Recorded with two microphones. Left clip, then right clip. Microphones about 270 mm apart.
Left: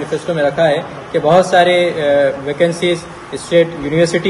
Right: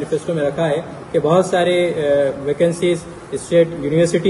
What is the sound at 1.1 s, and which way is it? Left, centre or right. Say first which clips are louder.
Speech: left 5 dB; centre.